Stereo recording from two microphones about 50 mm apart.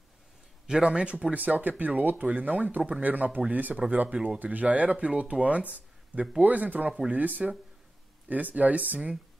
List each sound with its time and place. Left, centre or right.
0.7 s speech: centre